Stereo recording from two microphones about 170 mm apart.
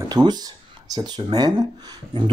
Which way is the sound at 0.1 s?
25° right (ahead or behind).